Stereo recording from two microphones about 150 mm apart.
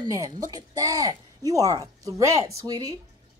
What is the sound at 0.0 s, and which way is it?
Speech, 25° right (ahead or behind).